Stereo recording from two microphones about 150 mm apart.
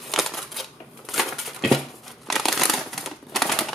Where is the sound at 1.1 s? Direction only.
Centre (ahead or behind).